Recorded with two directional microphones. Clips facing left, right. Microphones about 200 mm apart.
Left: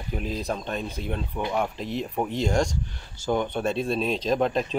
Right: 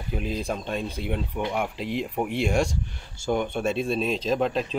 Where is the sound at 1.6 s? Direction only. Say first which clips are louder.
Even; 10° right (ahead or behind).